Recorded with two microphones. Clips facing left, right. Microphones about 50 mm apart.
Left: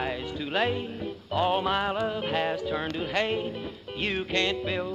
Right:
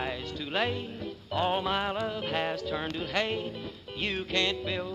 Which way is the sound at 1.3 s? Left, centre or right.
Centre.